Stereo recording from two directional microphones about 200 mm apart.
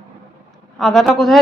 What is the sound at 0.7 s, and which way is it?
Speech, centre (ahead or behind).